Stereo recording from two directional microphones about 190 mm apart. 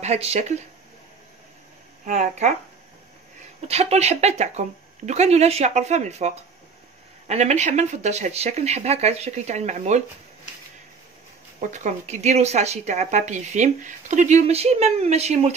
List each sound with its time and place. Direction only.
0.0 s a woman's voice: 35° right (ahead or behind)
2.0 s a woman's voice: 40° right (ahead or behind)
3.6 s a woman's voice: 35° right (ahead or behind)
11.6 s a woman's voice: 40° right (ahead or behind)